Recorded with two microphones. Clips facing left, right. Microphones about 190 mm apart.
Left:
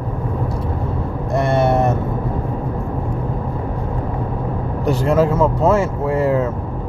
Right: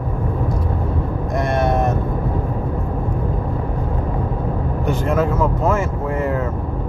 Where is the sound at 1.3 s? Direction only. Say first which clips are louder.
Left 4 dB; 30° left (ahead or behind).